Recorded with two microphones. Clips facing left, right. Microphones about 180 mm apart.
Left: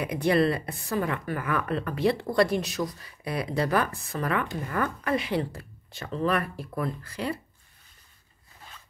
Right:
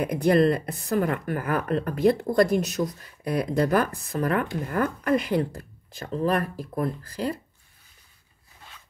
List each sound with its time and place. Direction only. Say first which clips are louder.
0.0 s speech: right 3 dB; 45° right (ahead or behind)